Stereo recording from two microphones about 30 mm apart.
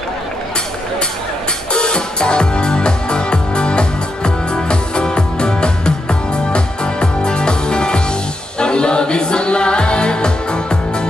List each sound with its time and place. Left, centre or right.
1.7 s music: left